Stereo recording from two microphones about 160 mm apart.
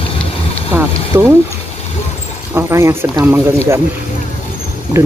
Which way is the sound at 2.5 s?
15° right (ahead or behind).